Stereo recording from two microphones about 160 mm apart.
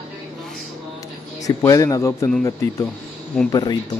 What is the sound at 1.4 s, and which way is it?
Speech, 20° left (ahead or behind).